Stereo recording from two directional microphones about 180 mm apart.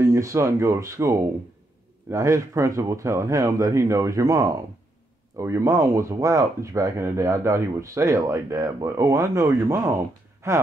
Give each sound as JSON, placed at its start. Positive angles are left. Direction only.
{"t": 0.0, "sound": "speech", "side_deg": -15}